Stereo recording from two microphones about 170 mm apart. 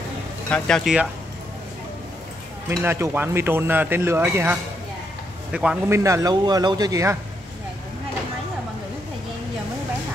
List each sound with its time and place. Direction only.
0.5 s speech: 5° left (ahead or behind)
2.7 s speech: 15° right (ahead or behind)
5.9 s speech: 15° right (ahead or behind)